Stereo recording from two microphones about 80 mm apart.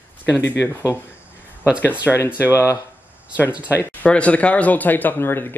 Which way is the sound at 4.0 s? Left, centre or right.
Centre.